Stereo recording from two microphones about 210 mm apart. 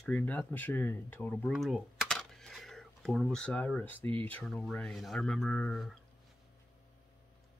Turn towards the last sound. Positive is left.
turn(degrees=0)  # may be behind; listen again after turning